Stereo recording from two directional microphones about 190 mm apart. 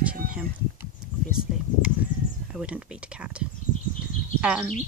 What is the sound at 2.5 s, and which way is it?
Speech, 5° right (ahead or behind).